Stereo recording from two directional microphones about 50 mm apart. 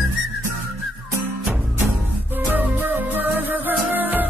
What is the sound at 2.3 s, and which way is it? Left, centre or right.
Music, right.